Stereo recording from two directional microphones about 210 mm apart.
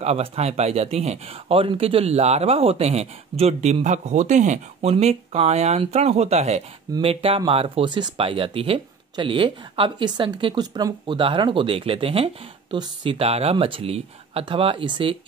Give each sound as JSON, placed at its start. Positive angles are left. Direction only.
{"t": 0.0, "sound": "speech", "side_deg": -30}